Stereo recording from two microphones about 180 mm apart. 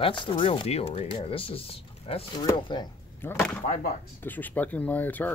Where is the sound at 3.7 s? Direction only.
45° left (ahead or behind).